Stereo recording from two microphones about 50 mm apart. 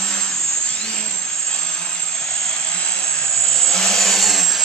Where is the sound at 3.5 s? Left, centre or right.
Centre.